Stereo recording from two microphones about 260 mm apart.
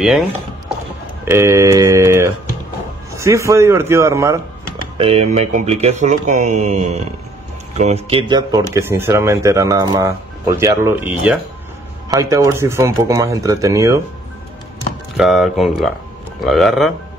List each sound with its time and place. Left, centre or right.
1.2 s speech: centre
4.9 s speech: right
15.1 s speech: centre